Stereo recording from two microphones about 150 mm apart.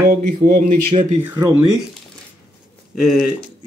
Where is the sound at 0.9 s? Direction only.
30° right (ahead or behind).